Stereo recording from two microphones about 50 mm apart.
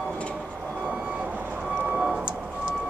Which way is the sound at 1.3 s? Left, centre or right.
Right.